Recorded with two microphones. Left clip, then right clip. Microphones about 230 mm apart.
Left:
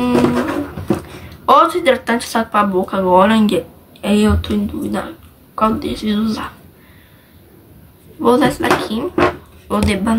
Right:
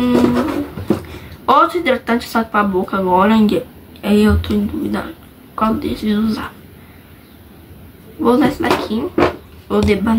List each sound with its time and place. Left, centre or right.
0.0 s music: centre
1.4 s speech: centre
8.2 s speech: centre